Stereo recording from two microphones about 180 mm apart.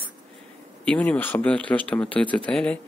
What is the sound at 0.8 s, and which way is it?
Speech, 5° left (ahead or behind).